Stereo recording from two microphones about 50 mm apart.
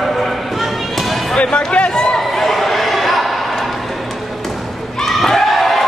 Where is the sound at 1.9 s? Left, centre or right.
Centre.